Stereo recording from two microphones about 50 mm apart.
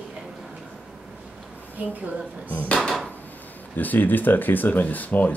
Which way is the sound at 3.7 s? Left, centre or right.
Left.